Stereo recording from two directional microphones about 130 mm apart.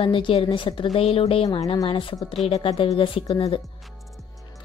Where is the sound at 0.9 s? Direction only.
45° left (ahead or behind).